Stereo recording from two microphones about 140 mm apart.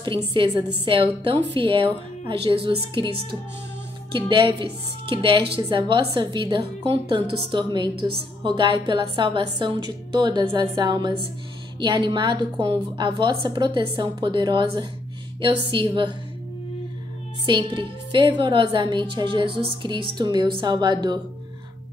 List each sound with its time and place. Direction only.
0.3 s a woman's voice: 35° right (ahead or behind)
17.5 s a woman's voice: 35° right (ahead or behind)